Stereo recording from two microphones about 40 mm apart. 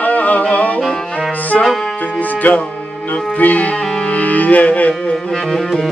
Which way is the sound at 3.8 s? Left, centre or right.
Centre.